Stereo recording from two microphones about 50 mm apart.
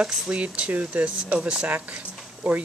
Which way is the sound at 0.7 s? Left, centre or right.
Right.